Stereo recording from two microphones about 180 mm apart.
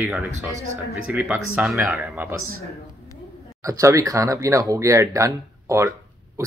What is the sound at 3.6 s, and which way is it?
Speech, 15° right (ahead or behind).